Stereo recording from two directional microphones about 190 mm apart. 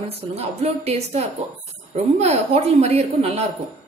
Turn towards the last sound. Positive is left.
turn(degrees=-35)  # may be behind; listen again after turning